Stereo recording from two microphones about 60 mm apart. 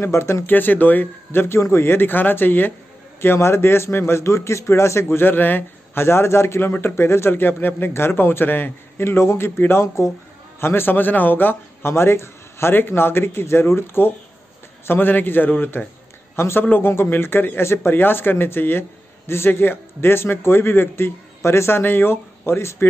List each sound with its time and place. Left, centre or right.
0.0 s a man's voice: left
0.5 s a man's voice: left
6.0 s a man's voice: left
16.3 s a man's voice: left